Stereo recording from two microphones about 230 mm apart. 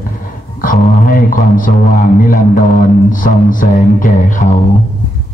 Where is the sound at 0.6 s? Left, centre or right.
Left.